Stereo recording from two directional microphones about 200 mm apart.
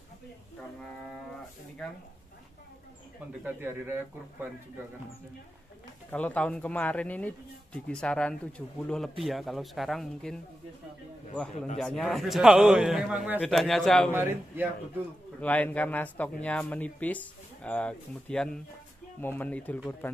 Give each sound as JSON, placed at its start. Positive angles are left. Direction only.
{"t": 0.6, "sound": "a man's voice", "side_deg": 5}
{"t": 3.4, "sound": "speech", "side_deg": -10}
{"t": 6.0, "sound": "a man's voice", "side_deg": 10}
{"t": 11.5, "sound": "speech", "side_deg": 35}
{"t": 11.8, "sound": "a man's voice", "side_deg": 0}
{"t": 14.1, "sound": "speech", "side_deg": -10}
{"t": 15.4, "sound": "speech", "side_deg": 10}